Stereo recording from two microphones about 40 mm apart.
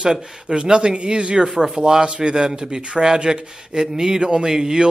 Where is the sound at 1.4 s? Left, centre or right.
Centre.